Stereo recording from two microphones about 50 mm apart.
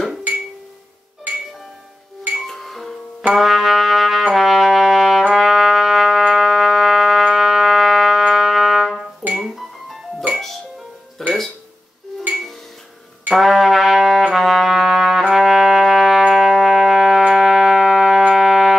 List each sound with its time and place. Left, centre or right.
2.3 s music: centre
3.3 s trumpet: centre
5.3 s music: centre
8.2 s music: centre
8.5 s trumpet: centre
9.3 s music: centre
11.2 s music: centre
13.3 s music: centre
14.3 s trumpet: centre
15.3 s music: centre